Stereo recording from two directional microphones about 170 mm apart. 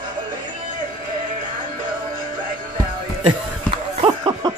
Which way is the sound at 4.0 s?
25° right (ahead or behind).